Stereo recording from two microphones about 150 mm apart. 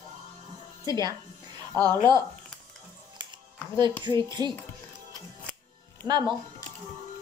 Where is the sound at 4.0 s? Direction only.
30° right (ahead or behind).